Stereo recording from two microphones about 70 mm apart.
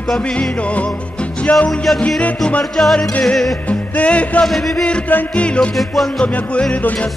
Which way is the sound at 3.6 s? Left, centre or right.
Centre.